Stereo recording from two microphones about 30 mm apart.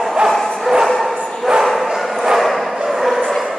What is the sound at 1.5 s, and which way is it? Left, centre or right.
Bow-wow, centre.